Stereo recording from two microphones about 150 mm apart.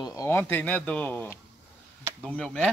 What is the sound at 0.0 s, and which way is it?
Speech, 20° left (ahead or behind).